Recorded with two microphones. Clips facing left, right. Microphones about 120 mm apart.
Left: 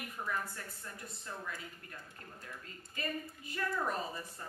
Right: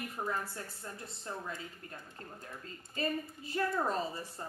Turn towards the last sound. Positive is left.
turn(degrees=-30)  # may be behind; listen again after turning